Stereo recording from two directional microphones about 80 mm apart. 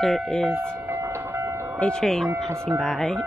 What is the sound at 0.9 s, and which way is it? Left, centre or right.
Train, right.